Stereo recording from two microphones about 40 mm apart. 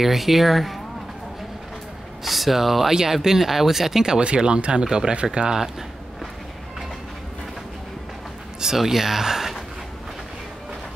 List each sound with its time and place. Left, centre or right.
0.0 s speech: centre
2.2 s speech: centre
4.2 s speech: right
8.5 s speech: centre